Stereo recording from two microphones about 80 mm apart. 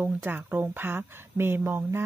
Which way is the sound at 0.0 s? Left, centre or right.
Right.